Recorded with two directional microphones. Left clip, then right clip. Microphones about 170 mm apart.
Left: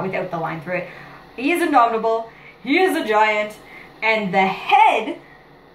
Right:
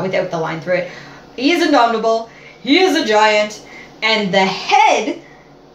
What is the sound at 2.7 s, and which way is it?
Speech, 15° right (ahead or behind).